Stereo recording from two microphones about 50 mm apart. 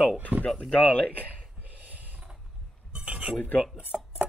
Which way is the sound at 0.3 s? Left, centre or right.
Right.